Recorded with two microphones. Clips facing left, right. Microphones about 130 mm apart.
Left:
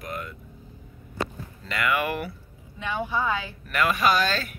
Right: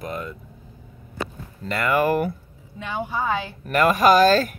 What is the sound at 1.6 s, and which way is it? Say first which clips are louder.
Speech: right 5 dB; 40° right (ahead or behind).